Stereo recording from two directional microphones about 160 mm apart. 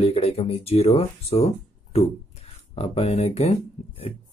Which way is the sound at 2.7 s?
40° left (ahead or behind).